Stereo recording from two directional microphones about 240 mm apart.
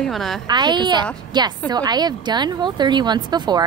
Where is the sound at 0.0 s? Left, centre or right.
Centre.